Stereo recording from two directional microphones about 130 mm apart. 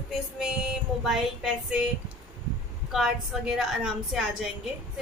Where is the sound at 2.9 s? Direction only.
5° right (ahead or behind).